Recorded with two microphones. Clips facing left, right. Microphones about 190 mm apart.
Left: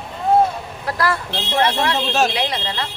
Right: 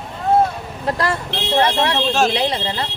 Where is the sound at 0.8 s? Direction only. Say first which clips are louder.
Right 1 dB; 25° right (ahead or behind).